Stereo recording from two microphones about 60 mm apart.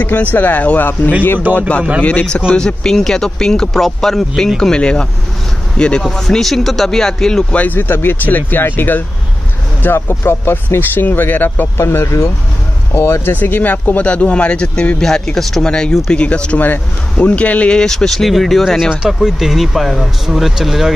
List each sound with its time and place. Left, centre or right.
0.0 s speech: left
2.0 s speech: left
7.5 s speech: left
11.8 s speech: left; by 16.5 s centre
16.5 s speech: left; by 20.9 s centre